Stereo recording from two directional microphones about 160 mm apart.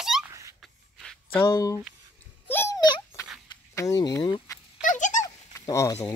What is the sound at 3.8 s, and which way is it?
Speech, 25° left (ahead or behind).